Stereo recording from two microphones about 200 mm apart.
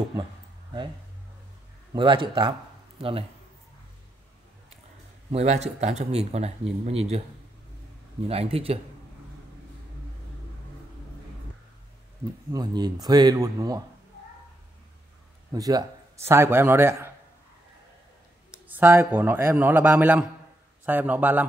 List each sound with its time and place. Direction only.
2.0 s speech: 25° right (ahead or behind)
5.3 s speech: 35° right (ahead or behind)
8.3 s speech: 30° right (ahead or behind)
12.5 s speech: 20° right (ahead or behind)
15.5 s a man's voice: 20° right (ahead or behind)
18.5 s a man's voice: 10° right (ahead or behind)